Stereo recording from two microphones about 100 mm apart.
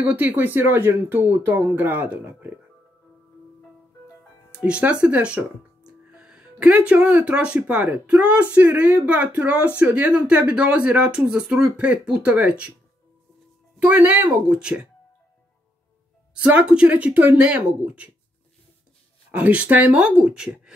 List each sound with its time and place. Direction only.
0.0 s speech: 15° right (ahead or behind)
4.6 s speech: 10° right (ahead or behind)
13.7 s speech: 15° right (ahead or behind)
16.3 s speech: 15° right (ahead or behind)
19.3 s speech: 15° right (ahead or behind)